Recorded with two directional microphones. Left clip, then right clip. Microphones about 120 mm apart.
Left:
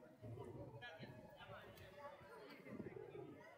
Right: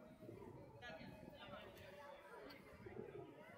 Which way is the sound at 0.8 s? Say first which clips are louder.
Right 1 dB; 25° left (ahead or behind).